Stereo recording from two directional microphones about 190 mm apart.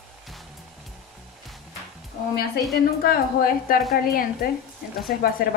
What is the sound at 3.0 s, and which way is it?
Speech, 50° left (ahead or behind).